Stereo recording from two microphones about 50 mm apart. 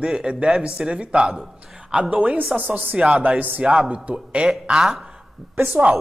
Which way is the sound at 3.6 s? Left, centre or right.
Right.